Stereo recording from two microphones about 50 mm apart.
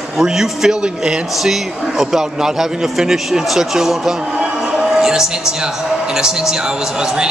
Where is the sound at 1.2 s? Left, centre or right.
Centre.